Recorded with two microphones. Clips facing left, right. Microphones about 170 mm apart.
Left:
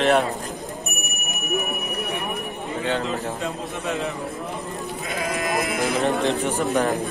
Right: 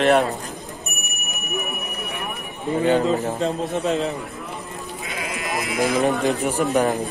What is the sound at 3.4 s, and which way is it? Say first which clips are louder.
Speech: right 6 dB; 40° right (ahead or behind).